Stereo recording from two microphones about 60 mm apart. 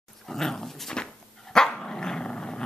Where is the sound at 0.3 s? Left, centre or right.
Centre.